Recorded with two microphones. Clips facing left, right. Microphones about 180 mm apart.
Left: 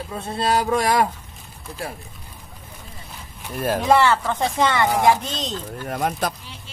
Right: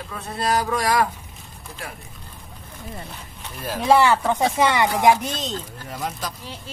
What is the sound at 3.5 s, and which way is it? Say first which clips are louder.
Speech: left 7 dB; 50° left (ahead or behind).